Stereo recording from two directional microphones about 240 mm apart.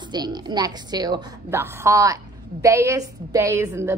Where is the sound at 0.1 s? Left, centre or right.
Centre.